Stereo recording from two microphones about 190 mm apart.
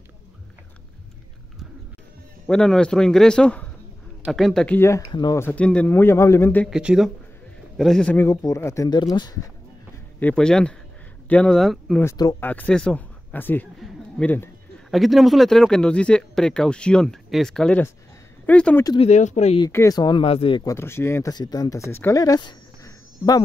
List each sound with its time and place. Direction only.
2.4 s speech: 5° left (ahead or behind)
6.7 s speech: 5° right (ahead or behind); by 9.4 s 20° left (ahead or behind)
10.2 s speech: 5° left (ahead or behind)
12.0 s speech: 15° left (ahead or behind)
18.9 s speech: 35° left (ahead or behind)
19.6 s speech: 15° left (ahead or behind)
20.7 s speech: 15° left (ahead or behind)